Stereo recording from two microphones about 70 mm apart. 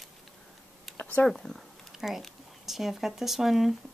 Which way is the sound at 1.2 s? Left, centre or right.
Centre.